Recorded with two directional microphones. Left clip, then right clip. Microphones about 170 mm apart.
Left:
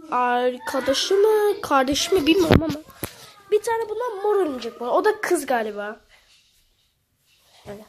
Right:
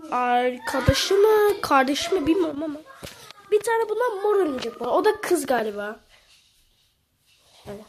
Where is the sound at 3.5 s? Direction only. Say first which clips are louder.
Left 1 dB; 15° left (ahead or behind).